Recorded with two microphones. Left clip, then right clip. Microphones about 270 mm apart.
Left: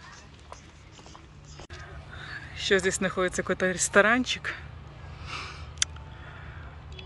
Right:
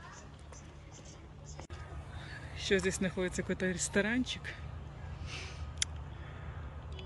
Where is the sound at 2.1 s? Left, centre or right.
Centre.